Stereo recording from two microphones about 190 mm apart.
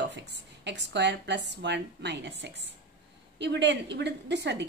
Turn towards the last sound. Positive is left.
turn(degrees=-65)  # may be behind; listen again after turning